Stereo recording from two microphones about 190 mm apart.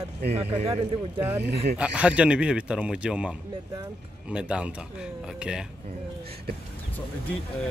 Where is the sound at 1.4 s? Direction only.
60° right (ahead or behind).